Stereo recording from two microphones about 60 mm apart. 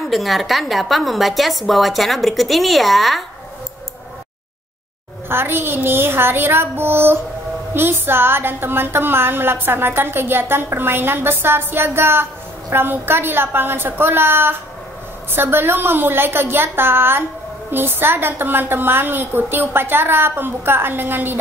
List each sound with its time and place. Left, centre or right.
0.0 s a woman's voice: centre
5.3 s a woman's voice: right